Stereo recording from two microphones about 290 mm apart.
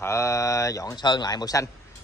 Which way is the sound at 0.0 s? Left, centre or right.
Centre.